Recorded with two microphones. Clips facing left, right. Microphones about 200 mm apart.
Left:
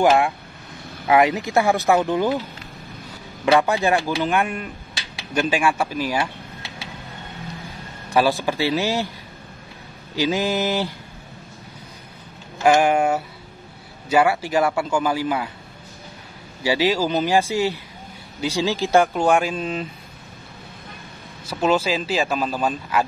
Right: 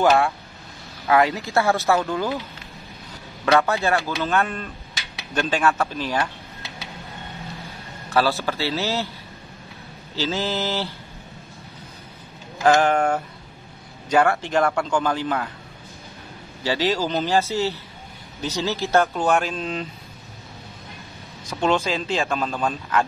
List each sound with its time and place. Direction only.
1.0 s speech: 20° left (ahead or behind)
3.5 s speech: 15° left (ahead or behind)
8.1 s speech: 15° left (ahead or behind)
10.1 s speech: 15° left (ahead or behind)
12.6 s speech: 10° left (ahead or behind)
16.6 s speech: 10° left (ahead or behind)
21.5 s speech: 5° left (ahead or behind)